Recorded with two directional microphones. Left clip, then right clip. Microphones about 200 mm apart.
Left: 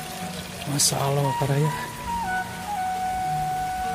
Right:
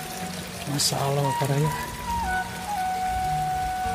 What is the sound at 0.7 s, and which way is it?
Speech, 10° left (ahead or behind).